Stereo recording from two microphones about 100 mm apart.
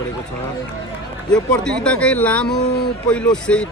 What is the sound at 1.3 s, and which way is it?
Speech, 10° left (ahead or behind).